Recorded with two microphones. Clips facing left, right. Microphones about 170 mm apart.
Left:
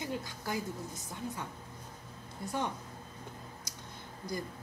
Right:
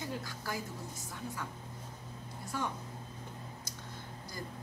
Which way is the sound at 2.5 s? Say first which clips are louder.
Left 2 dB; 20° left (ahead or behind).